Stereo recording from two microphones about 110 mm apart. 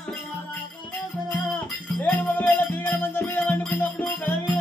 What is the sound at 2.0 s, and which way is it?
Music, 15° left (ahead or behind).